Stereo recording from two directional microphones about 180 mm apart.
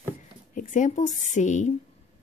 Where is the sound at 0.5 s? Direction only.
45° left (ahead or behind).